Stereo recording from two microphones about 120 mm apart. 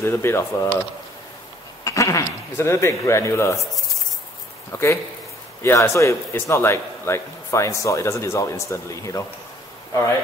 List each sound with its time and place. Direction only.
0.0 s a man's voice: 20° left (ahead or behind)
1.9 s a man's voice: 25° left (ahead or behind)
4.7 s a man's voice: 20° left (ahead or behind)